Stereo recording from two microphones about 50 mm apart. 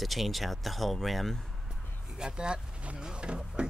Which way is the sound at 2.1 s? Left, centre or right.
Centre.